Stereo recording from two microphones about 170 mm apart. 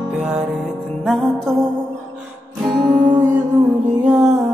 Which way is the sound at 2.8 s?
20° right (ahead or behind).